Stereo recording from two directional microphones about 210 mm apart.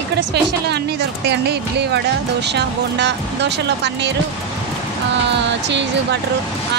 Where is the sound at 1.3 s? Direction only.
55° right (ahead or behind).